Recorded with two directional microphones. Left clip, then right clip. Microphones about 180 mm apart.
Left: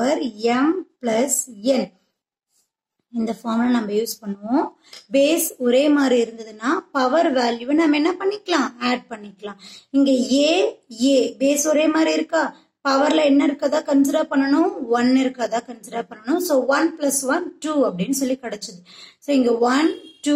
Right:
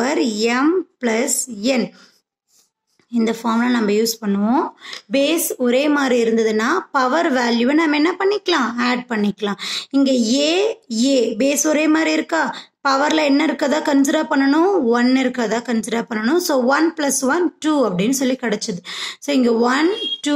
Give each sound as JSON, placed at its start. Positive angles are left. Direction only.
{"t": 0.1, "sound": "speech", "side_deg": -45}
{"t": 3.6, "sound": "speech", "side_deg": -45}
{"t": 4.0, "sound": "a woman's voice", "side_deg": -35}